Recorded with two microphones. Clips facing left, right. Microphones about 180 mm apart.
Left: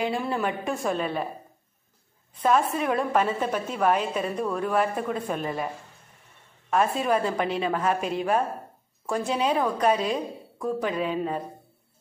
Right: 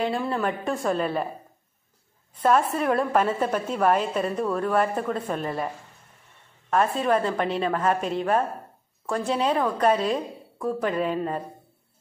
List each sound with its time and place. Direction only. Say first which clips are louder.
0.0 s a woman's voice: right 1 dB; 5° left (ahead or behind)
2.4 s a woman's voice: right 2 dB; centre (ahead or behind)
6.7 s a woman's voice: right 1 dB; 5° left (ahead or behind)